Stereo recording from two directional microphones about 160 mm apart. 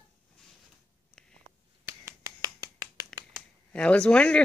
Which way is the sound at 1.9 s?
20° right (ahead or behind).